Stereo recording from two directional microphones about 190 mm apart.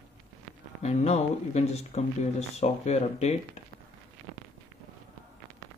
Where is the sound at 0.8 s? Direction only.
35° left (ahead or behind).